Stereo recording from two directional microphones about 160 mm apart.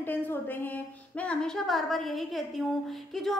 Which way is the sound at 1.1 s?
5° left (ahead or behind).